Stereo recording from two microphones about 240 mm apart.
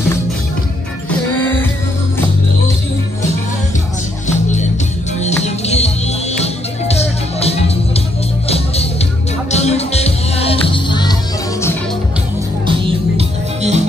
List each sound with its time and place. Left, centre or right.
5.2 s music: left
13.2 s music: right